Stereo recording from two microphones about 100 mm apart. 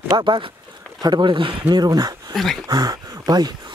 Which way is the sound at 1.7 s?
40° right (ahead or behind).